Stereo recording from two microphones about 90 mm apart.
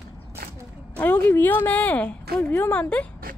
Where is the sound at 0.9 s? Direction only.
20° left (ahead or behind).